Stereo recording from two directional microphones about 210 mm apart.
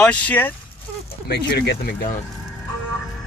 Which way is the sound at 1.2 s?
50° left (ahead or behind).